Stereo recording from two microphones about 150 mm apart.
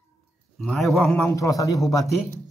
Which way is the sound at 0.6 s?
Centre (ahead or behind).